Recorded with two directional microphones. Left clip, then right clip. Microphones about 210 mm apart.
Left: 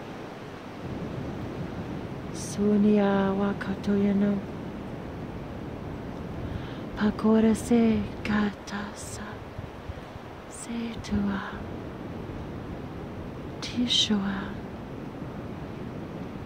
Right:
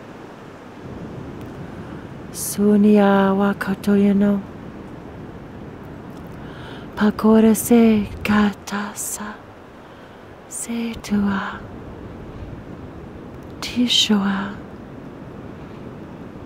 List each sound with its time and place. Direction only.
2.5 s speech: 40° right (ahead or behind)
7.0 s speech: 30° right (ahead or behind)
10.7 s a sound: 30° right (ahead or behind)
13.7 s speech: 30° right (ahead or behind)